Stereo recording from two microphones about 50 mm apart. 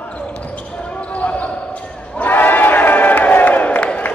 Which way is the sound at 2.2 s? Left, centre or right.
Left.